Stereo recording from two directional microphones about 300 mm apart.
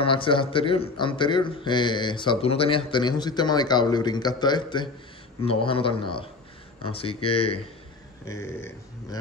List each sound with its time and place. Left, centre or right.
0.0 s a man's voice: centre